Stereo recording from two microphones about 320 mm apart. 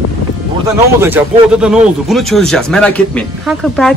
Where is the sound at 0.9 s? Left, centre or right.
Centre.